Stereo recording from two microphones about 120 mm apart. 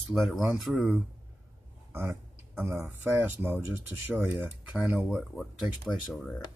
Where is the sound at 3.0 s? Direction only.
15° right (ahead or behind).